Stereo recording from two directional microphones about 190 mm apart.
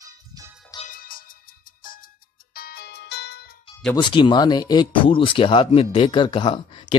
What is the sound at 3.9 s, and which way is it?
Speech, 25° left (ahead or behind).